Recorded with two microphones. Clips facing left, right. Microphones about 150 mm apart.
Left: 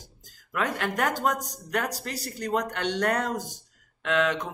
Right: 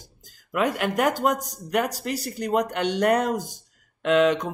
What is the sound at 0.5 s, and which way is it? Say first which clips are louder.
A man's voice: right 5 dB; 15° right (ahead or behind).